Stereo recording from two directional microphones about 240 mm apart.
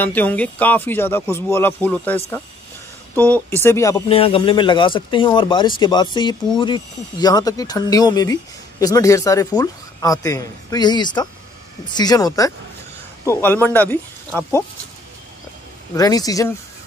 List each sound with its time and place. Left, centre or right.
0.0 s speech: centre
4.1 s speech: left
15.9 s speech: centre